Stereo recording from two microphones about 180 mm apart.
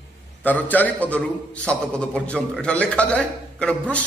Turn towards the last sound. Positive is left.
turn(degrees=5)  # may be behind; listen again after turning